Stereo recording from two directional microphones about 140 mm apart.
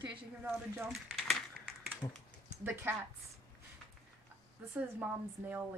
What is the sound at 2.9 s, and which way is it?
Speech, 15° right (ahead or behind).